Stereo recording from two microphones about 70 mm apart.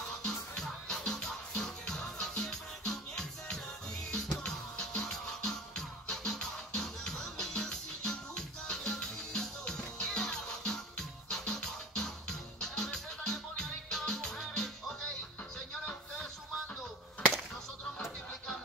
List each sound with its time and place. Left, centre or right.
0.2 s music: centre